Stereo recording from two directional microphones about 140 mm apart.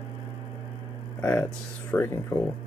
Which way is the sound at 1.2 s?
15° left (ahead or behind).